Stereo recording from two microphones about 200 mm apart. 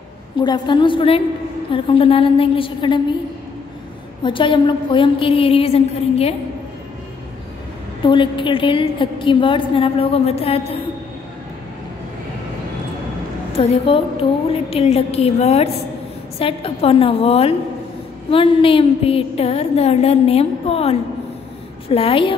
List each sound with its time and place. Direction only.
0.4 s a woman's voice: 25° left (ahead or behind)
4.2 s a woman's voice: 25° left (ahead or behind)
8.0 s a woman's voice: 25° left (ahead or behind)
13.5 s a woman's voice: 30° left (ahead or behind)